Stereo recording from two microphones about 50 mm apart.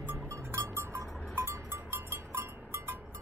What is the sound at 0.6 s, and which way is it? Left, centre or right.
Music, right.